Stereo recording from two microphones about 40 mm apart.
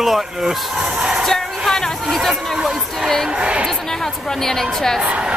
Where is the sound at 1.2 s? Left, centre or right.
Centre.